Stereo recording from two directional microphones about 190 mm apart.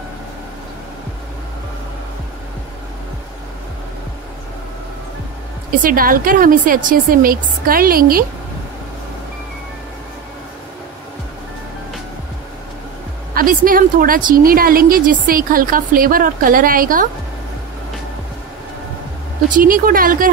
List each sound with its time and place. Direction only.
5.8 s a woman's voice: 50° right (ahead or behind)
13.3 s a woman's voice: 50° right (ahead or behind)
19.5 s a woman's voice: 45° right (ahead or behind)